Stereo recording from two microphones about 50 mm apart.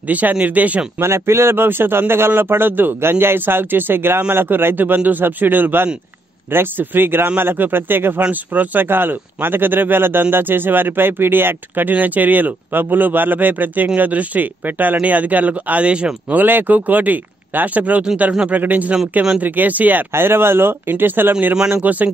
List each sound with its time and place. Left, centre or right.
0.1 s speech: right
1.0 s a man's voice: right
3.0 s a man's voice: right
16.3 s speech: right
20.1 s a man's voice: right